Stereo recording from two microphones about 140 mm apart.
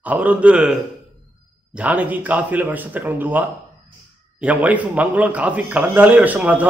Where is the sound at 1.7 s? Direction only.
10° right (ahead or behind).